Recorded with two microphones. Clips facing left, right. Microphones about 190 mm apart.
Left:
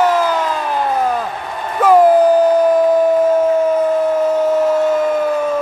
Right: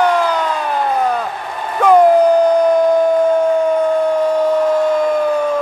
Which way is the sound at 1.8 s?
5° left (ahead or behind).